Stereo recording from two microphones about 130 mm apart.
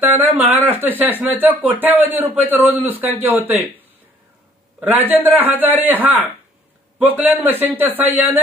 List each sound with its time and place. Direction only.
0.1 s speech: 15° right (ahead or behind)
4.7 s speech: 15° right (ahead or behind)